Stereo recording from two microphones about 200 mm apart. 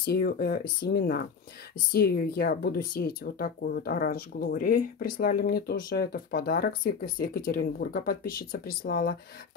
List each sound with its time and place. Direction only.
0.0 s speech: 50° left (ahead or behind)